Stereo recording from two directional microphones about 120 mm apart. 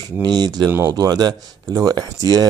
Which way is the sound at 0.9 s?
35° right (ahead or behind).